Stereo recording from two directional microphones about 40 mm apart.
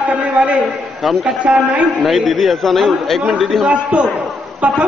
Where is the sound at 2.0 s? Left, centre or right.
Centre.